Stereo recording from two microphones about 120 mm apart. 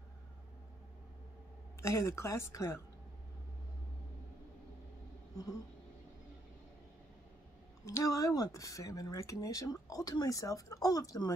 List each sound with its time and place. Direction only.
1.8 s speech: 25° left (ahead or behind)
7.8 s speech: 25° left (ahead or behind)